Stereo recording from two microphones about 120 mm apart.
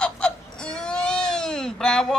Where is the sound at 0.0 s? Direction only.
5° left (ahead or behind).